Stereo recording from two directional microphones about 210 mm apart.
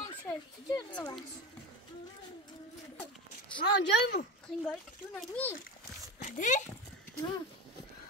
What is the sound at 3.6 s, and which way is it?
Speech, 55° left (ahead or behind).